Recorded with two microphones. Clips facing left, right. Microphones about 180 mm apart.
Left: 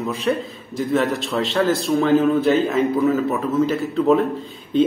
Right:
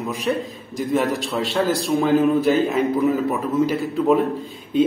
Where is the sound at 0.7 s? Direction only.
15° right (ahead or behind).